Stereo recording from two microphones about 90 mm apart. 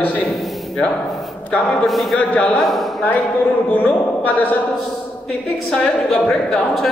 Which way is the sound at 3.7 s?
20° left (ahead or behind).